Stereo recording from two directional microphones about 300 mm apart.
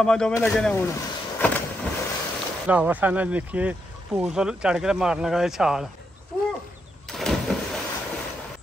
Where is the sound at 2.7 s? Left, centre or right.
Centre.